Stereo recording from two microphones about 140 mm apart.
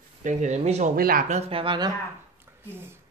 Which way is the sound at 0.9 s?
90° right.